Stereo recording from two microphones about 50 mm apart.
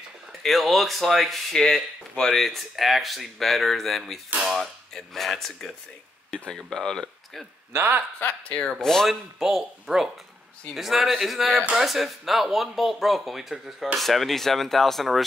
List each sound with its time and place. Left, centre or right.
0.3 s speech: centre
7.7 s speech: right
8.2 s speech: left
9.0 s speech: centre